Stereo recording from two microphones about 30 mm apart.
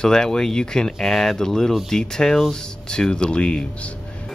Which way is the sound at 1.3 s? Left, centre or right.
Centre.